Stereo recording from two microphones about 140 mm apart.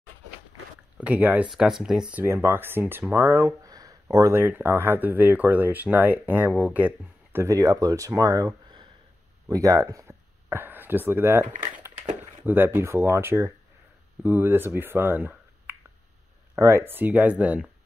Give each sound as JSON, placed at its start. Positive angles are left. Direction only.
{"t": 0.9, "sound": "speech", "side_deg": -10}
{"t": 7.3, "sound": "speech", "side_deg": -20}
{"t": 12.4, "sound": "speech", "side_deg": -15}